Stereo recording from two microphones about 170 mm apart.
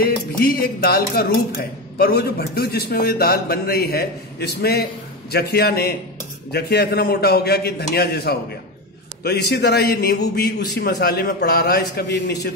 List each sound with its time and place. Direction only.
0.0 s a man's voice: 60° left (ahead or behind)